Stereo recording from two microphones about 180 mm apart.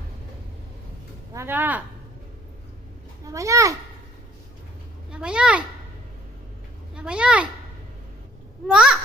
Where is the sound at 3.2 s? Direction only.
15° right (ahead or behind).